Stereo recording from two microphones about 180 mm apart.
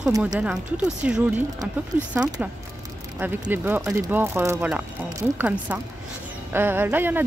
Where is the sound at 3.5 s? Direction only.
10° right (ahead or behind).